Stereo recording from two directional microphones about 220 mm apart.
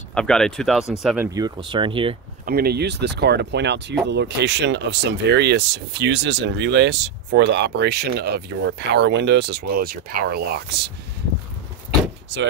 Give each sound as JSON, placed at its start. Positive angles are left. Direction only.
{"t": 0.1, "sound": "speech", "side_deg": 5}
{"t": 1.0, "sound": "speech", "side_deg": -10}
{"t": 2.4, "sound": "speech", "side_deg": -45}